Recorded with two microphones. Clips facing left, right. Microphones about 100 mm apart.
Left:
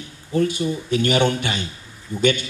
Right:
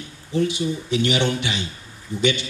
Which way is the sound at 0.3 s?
45° left (ahead or behind).